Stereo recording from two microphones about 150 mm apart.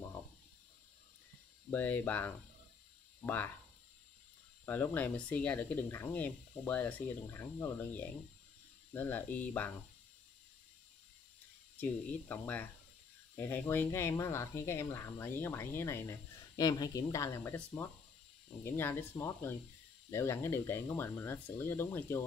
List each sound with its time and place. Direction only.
1.7 s speech: 10° left (ahead or behind)
4.6 s speech: 10° left (ahead or behind)
11.7 s speech: 10° left (ahead or behind)